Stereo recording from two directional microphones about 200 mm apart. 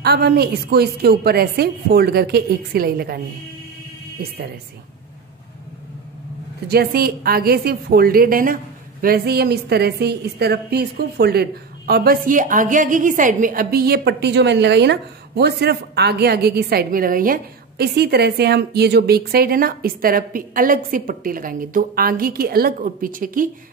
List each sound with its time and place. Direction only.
0.0 s a woman's voice: 50° right (ahead or behind)
6.7 s a woman's voice: 50° right (ahead or behind)